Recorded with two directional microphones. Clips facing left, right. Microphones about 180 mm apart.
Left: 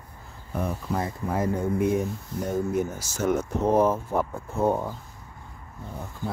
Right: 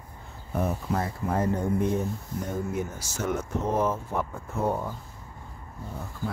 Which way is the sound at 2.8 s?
40° left (ahead or behind).